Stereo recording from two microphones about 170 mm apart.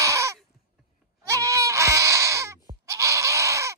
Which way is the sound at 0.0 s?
15° right (ahead or behind).